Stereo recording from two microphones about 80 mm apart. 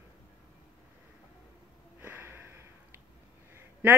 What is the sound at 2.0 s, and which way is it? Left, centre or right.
Sniff, right.